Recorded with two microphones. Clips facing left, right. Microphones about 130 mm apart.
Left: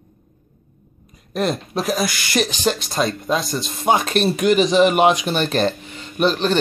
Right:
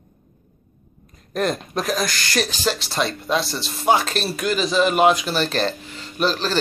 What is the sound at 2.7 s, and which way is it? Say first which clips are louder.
Speech: left 2 dB; 30° right (ahead or behind).